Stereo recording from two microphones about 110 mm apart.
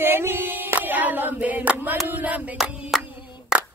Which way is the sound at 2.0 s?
15° right (ahead or behind).